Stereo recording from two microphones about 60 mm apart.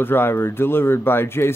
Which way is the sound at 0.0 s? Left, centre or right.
Left.